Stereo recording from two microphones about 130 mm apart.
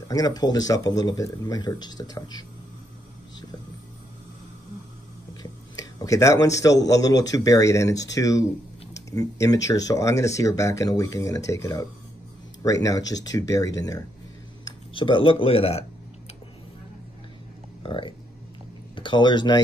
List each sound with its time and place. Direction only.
0.1 s speech: 30° left (ahead or behind)
5.4 s a man's voice: 25° left (ahead or behind)
14.6 s speech: 40° left (ahead or behind)
17.8 s speech: 40° left (ahead or behind)